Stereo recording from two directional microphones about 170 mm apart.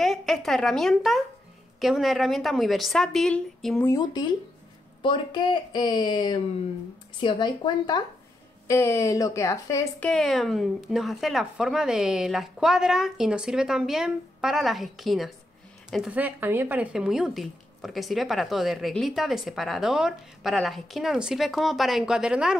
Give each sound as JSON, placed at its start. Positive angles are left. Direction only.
{"t": 0.0, "sound": "speech", "side_deg": 0}
{"t": 3.9, "sound": "speech", "side_deg": 25}